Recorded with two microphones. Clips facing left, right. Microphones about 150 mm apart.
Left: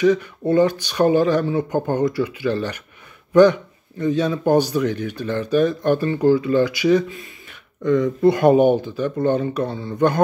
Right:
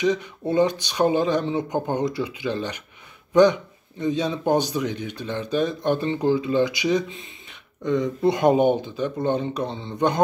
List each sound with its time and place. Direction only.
0.0 s speech: 15° right (ahead or behind)
4.0 s speech: 15° right (ahead or behind)